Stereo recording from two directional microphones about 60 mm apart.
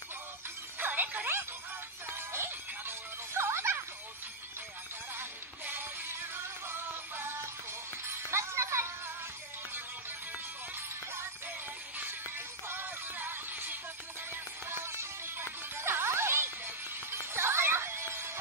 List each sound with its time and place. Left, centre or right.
0.7 s music: right
2.0 s music: right
6.3 s music: right
12.6 s music: right